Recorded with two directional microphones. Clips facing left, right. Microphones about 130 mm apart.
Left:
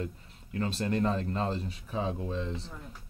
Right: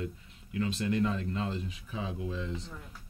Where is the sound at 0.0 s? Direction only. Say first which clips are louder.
Left 1 dB; 40° left (ahead or behind).